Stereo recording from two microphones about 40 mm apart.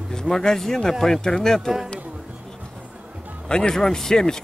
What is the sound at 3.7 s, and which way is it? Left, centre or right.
Speech, centre.